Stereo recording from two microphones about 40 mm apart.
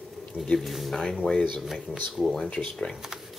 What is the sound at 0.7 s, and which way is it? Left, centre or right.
Speech, centre.